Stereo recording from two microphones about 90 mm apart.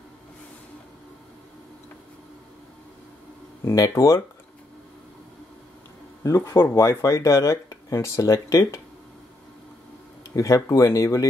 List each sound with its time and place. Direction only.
3.6 s speech: 40° left (ahead or behind)
6.2 s speech: 35° left (ahead or behind)
10.3 s speech: 40° left (ahead or behind)